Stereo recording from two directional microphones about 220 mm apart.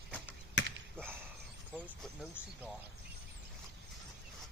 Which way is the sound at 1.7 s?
5° right (ahead or behind).